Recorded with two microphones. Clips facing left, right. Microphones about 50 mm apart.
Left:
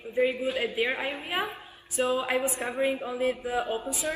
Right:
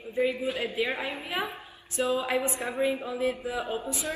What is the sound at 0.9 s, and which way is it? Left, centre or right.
Music, left.